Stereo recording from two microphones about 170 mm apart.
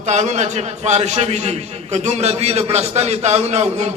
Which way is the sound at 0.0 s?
45° right (ahead or behind).